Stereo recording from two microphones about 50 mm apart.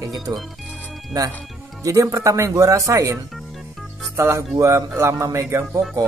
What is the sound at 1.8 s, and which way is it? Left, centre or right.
Speech, right.